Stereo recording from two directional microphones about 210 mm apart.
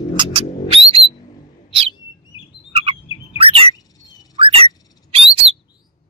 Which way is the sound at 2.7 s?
25° right (ahead or behind).